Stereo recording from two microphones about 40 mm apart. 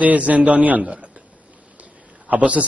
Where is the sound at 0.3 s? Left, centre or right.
Right.